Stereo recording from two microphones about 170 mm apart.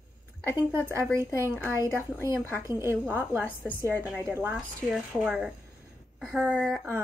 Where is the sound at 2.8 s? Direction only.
10° right (ahead or behind).